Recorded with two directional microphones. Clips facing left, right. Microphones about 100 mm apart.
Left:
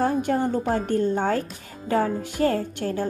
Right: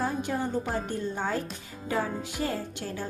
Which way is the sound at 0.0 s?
55° left (ahead or behind).